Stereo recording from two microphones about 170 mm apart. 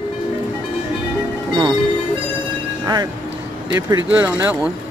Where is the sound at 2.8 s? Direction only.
25° right (ahead or behind).